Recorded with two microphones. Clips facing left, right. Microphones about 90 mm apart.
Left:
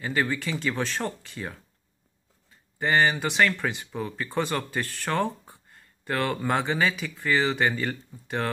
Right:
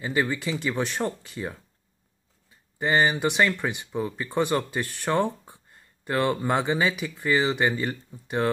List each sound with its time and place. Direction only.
0.0 s speech: 20° right (ahead or behind)
2.8 s speech: 20° right (ahead or behind)